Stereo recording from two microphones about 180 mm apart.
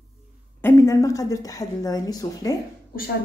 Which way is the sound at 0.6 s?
15° left (ahead or behind).